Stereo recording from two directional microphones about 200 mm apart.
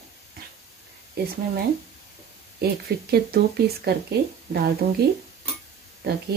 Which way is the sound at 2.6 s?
50° right (ahead or behind).